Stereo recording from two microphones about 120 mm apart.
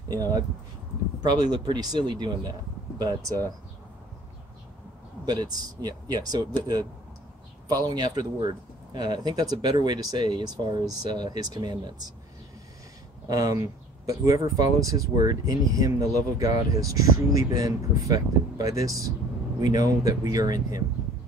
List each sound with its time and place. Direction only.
0.1 s speech: 30° right (ahead or behind)
5.2 s speech: 35° right (ahead or behind)
7.6 s speech: 35° right (ahead or behind)
13.3 s speech: 30° right (ahead or behind)